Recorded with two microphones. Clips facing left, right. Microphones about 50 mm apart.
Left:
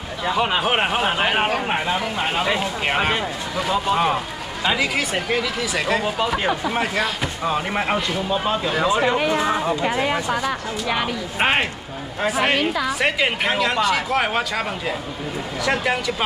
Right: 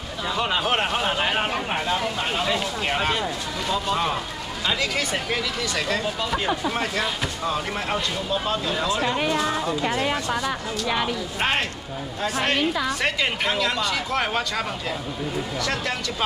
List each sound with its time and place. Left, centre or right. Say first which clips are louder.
0.2 s a woman's voice: left 4 dB; left
6.0 s speech: left 4 dB; left
7.5 s a woman's voice: left 4 dB; left